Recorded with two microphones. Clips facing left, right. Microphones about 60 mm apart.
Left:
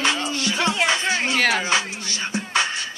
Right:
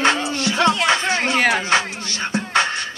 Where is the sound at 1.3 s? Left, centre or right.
Centre.